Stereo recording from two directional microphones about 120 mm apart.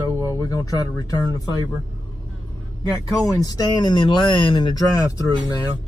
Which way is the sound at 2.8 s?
30° left (ahead or behind).